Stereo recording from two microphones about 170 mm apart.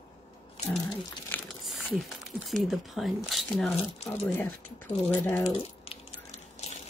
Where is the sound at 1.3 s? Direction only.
10° left (ahead or behind).